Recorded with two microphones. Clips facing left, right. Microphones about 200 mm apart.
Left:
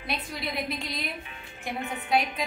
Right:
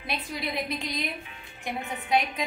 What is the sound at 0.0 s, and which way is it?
A woman's voice, centre (ahead or behind).